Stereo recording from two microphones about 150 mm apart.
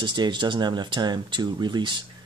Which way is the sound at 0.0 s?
30° right (ahead or behind).